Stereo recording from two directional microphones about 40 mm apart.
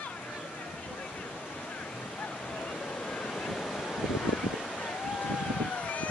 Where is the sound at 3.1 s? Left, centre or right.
Centre.